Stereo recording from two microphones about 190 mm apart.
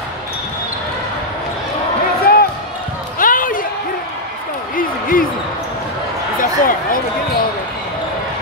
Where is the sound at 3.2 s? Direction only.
45° left (ahead or behind).